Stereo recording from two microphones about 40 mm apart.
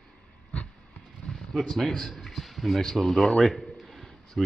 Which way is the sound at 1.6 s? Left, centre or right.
Centre.